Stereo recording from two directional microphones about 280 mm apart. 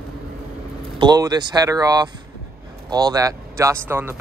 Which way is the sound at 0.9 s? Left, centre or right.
Centre.